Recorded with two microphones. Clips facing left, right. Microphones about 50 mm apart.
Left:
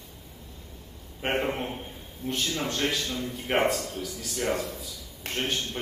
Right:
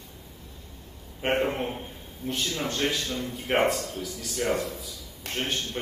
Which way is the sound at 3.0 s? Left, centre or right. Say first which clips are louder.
Even; right.